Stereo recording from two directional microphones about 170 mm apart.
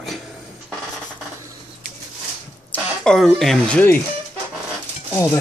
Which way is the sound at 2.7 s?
5° left (ahead or behind).